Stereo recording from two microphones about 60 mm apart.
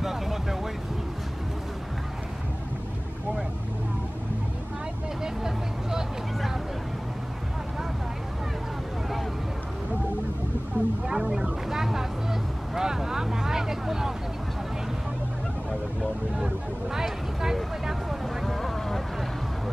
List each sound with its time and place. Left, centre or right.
0.0 s vehicle: centre
5.2 s vehicle: centre
10.8 s a sound: right
11.1 s vehicle: centre
16.3 s vehicle: centre
17.8 s a sound: centre